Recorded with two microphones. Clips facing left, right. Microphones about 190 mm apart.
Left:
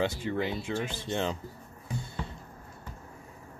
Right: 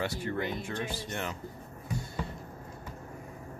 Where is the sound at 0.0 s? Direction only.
20° left (ahead or behind).